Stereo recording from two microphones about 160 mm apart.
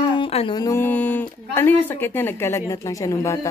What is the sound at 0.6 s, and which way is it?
A woman's voice, 15° left (ahead or behind).